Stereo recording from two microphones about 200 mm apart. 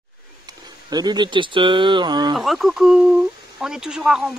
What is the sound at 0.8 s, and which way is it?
Speech, 20° right (ahead or behind).